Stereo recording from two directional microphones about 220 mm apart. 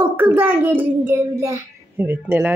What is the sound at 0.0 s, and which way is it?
A child's voice, 10° right (ahead or behind).